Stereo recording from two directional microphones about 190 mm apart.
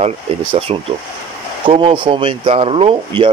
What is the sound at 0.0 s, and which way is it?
Speech, 30° right (ahead or behind).